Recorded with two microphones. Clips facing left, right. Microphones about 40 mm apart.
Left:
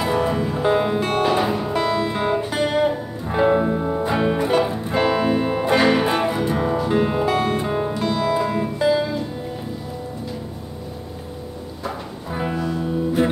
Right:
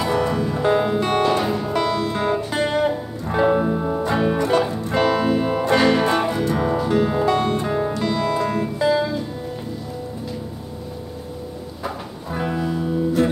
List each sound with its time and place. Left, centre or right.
0.0 s music: centre
2.5 s music: centre
6.6 s music: centre
6.9 s music: centre
7.2 s music: centre
12.3 s music: centre